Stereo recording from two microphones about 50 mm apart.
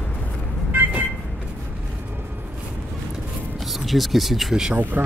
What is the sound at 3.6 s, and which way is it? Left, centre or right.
Speech, centre.